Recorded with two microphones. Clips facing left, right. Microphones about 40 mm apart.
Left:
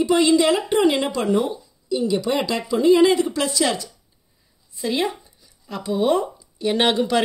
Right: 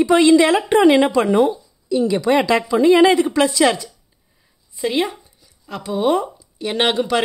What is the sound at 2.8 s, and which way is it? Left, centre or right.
A woman's voice, right.